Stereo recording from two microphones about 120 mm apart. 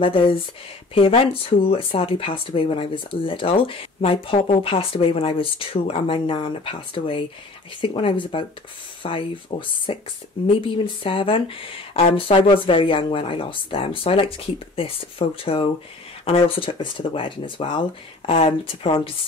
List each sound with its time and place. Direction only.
0.0 s speech: 45° left (ahead or behind)